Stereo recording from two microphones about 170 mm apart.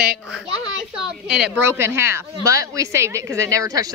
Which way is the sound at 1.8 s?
15° right (ahead or behind).